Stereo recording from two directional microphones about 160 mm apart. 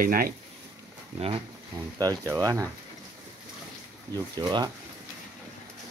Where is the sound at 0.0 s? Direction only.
65° right (ahead or behind).